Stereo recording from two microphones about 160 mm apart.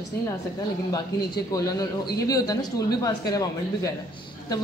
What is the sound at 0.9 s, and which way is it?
A man's voice, 25° left (ahead or behind).